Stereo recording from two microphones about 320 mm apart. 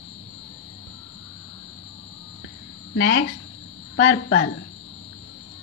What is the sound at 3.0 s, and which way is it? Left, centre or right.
A woman's voice, left.